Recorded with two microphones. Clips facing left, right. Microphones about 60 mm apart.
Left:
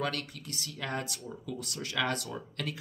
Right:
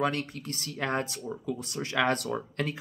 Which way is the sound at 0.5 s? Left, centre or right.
Right.